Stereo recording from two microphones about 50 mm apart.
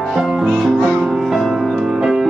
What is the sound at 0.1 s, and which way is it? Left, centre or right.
Music, centre.